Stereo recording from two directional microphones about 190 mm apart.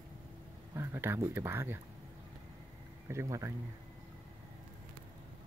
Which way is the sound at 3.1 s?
15° right (ahead or behind).